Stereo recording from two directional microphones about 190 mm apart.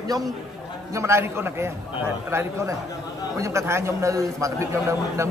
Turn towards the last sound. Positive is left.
turn(degrees=-15)  # may be behind; listen again after turning